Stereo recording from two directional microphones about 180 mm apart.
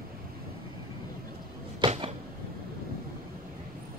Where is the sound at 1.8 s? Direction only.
25° right (ahead or behind).